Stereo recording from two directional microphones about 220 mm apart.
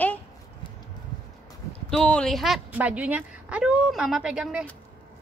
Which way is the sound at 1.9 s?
5° left (ahead or behind).